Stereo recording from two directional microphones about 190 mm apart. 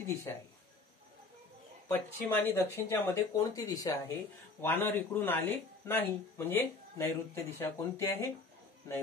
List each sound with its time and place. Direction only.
0.3 s speech: 15° left (ahead or behind)
1.9 s speech: 10° left (ahead or behind)